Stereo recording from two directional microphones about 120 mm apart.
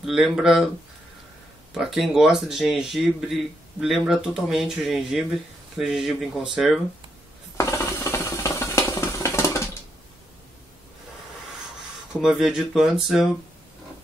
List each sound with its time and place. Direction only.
0.0 s speech: 5° right (ahead or behind)
1.7 s speech: centre (ahead or behind)
7.5 s ratchet: 25° left (ahead or behind)
12.2 s speech: 5° right (ahead or behind)